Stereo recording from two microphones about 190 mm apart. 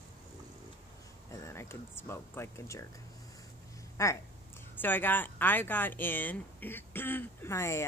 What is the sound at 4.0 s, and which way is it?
Speech, 15° left (ahead or behind).